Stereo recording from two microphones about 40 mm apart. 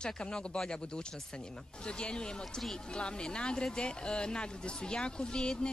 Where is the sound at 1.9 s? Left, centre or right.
Left.